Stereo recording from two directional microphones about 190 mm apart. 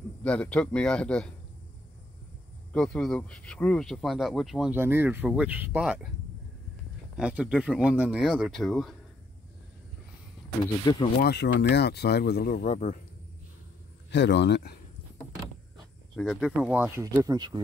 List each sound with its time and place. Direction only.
0.2 s speech: 5° left (ahead or behind)
2.7 s speech: 5° left (ahead or behind)
7.2 s speech: 5° right (ahead or behind)
10.6 s speech: 25° left (ahead or behind)
11.2 s speech: 60° left (ahead or behind)
12.6 s a man's voice: 35° left (ahead or behind)
14.1 s speech: 65° left (ahead or behind)
15.8 s speech: centre (ahead or behind); by 17.6 s 20° right (ahead or behind)